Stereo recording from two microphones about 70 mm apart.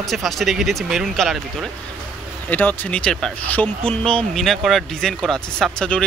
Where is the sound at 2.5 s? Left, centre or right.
Left.